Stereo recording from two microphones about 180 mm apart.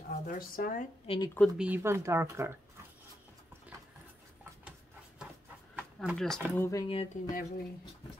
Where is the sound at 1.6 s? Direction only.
10° right (ahead or behind).